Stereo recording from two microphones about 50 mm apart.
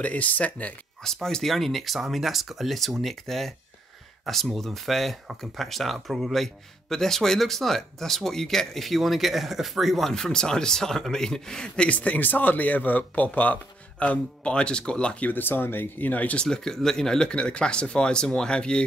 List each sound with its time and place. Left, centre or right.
0.0 s speech: left
1.0 s speech: centre
4.6 s speech: centre; by 15.2 s left
15.2 s speech: left
16.4 s speech: centre